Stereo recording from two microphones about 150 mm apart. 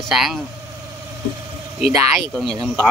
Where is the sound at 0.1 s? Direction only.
Centre (ahead or behind).